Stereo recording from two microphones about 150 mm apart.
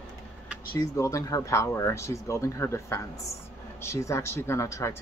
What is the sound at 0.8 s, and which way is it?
Speech, 20° left (ahead or behind).